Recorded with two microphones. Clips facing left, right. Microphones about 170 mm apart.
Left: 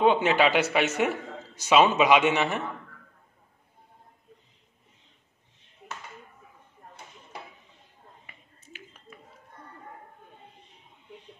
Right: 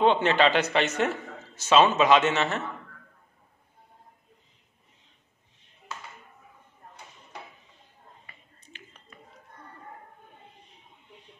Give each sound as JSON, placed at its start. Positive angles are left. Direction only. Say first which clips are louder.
{"t": 0.0, "sound": "a man's voice", "louder": "even", "side_deg": 10}
{"t": 8.3, "sound": "finger snapping", "louder": "left 2 dB", "side_deg": 5}